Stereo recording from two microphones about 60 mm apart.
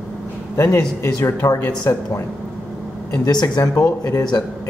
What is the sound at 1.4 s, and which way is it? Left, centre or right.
Speech, left.